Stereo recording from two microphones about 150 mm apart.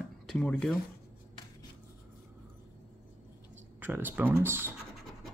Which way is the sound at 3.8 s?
10° right (ahead or behind).